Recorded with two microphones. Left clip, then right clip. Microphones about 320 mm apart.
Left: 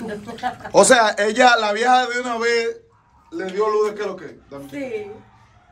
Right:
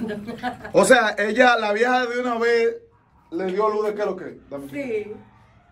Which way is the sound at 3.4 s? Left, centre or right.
Centre.